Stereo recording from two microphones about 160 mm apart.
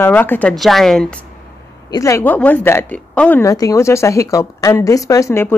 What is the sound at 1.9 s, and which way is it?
Speech, 20° left (ahead or behind).